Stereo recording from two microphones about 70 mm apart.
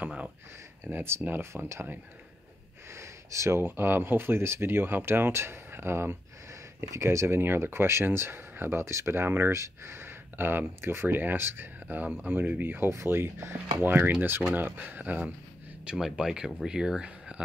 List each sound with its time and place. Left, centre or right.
0.0 s speech: centre
0.8 s speech: right; by 17.4 s centre